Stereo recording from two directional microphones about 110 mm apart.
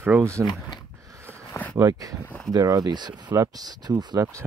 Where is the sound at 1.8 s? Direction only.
35° right (ahead or behind).